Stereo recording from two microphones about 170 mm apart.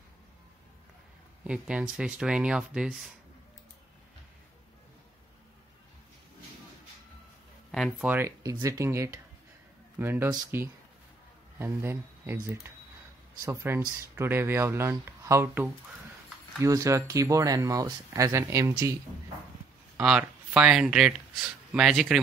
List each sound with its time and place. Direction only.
1.4 s speech: 5° right (ahead or behind)
7.7 s speech: centre (ahead or behind)
8.1 s speech: 15° right (ahead or behind)
20.0 s speech: 5° right (ahead or behind)